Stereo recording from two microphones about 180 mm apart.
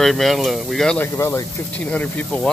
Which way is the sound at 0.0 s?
Centre (ahead or behind).